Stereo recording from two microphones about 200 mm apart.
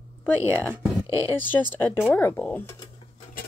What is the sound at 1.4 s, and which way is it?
Speech, 10° left (ahead or behind).